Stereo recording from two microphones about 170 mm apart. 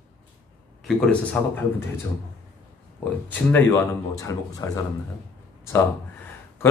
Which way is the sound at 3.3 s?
10° left (ahead or behind).